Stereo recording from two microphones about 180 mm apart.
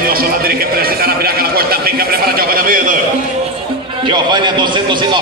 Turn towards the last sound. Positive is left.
turn(degrees=-25)  # may be behind; listen again after turning